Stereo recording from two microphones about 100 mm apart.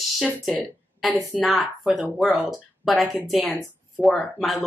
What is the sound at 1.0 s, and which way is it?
A woman's voice, centre (ahead or behind).